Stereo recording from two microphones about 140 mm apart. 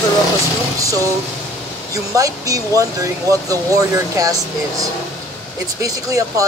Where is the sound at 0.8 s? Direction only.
25° right (ahead or behind).